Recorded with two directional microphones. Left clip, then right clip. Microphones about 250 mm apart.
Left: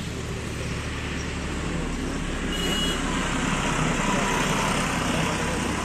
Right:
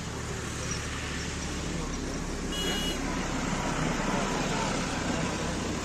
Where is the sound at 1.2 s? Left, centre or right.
Centre.